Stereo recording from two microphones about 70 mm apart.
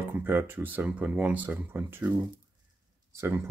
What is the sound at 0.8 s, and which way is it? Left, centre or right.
Speech, centre.